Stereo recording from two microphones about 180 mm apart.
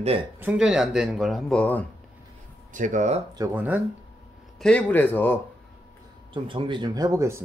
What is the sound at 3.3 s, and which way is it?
Speech, 15° right (ahead or behind).